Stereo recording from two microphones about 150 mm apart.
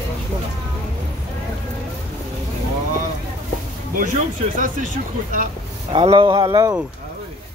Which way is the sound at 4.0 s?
60° right (ahead or behind).